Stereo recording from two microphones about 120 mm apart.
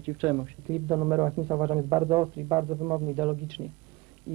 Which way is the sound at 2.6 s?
15° right (ahead or behind).